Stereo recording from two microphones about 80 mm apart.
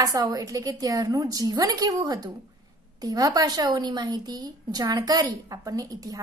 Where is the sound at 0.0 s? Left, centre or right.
Right.